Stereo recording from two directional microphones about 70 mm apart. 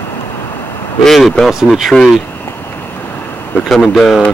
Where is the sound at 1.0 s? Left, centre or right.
Centre.